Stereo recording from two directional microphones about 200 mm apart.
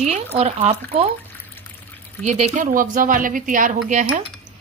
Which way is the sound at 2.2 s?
35° right (ahead or behind).